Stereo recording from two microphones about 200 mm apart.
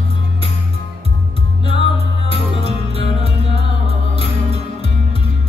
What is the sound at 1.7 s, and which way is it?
Music, 30° right (ahead or behind).